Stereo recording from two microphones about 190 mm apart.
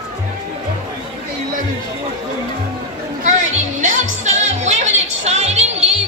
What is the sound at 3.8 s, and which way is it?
Music, 40° right (ahead or behind).